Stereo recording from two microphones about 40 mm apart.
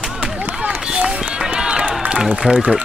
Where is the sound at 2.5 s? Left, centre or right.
Right.